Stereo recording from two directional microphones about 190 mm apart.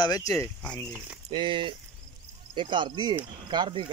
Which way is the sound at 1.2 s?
25° right (ahead or behind).